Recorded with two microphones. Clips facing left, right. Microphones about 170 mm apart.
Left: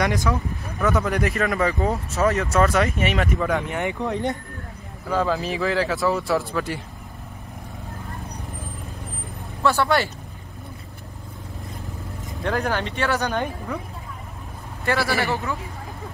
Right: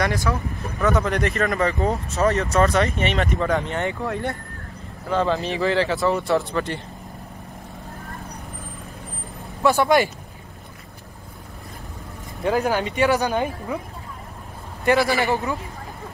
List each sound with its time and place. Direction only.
0.0 s speech: 15° left (ahead or behind)
0.3 s speech: 5° left (ahead or behind); by 4.4 s 20° left (ahead or behind)
5.1 s speech: centre (ahead or behind)
9.6 s speech: 15° right (ahead or behind)
12.4 s speech: 10° right (ahead or behind)
14.9 s speech: 15° right (ahead or behind)